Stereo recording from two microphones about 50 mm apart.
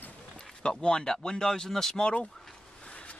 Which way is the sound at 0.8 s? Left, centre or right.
Centre.